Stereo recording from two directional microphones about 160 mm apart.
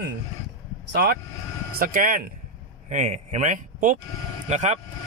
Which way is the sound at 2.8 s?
50° right (ahead or behind).